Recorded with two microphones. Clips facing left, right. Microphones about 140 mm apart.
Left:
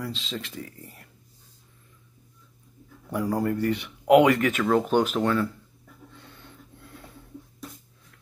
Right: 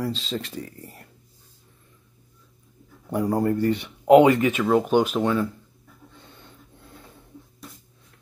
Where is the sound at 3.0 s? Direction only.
25° right (ahead or behind).